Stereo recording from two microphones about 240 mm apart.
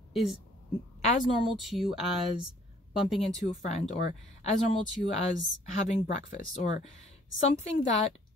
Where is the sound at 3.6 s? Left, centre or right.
Left.